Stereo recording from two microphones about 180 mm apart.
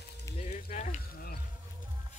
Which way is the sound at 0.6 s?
40° left (ahead or behind).